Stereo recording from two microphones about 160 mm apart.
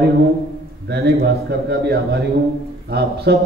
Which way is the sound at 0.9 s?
75° right (ahead or behind).